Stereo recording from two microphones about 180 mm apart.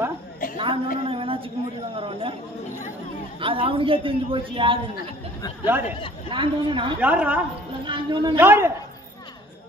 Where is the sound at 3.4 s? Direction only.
30° right (ahead or behind).